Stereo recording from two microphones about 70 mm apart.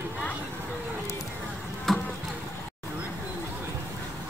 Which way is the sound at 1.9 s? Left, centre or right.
Centre.